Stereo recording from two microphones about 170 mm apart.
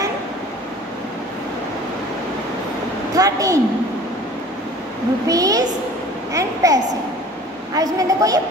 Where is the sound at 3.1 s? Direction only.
20° right (ahead or behind).